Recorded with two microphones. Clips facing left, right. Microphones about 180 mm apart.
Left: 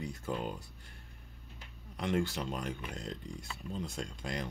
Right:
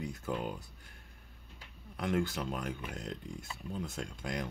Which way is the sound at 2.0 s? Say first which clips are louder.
Even; centre (ahead or behind).